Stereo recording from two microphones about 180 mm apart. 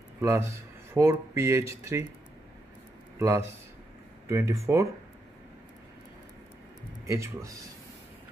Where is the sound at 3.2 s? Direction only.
15° right (ahead or behind).